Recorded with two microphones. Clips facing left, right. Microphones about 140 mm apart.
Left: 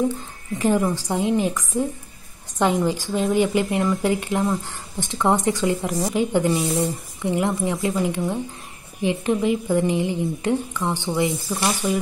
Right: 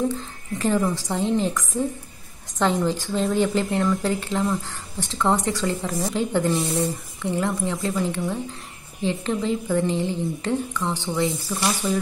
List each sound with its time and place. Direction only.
0.6 s a woman's voice: 15° left (ahead or behind)
2.6 s a woman's voice: 10° left (ahead or behind)